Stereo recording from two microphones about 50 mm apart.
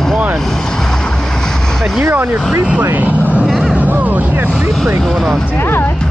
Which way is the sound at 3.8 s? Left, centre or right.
Right.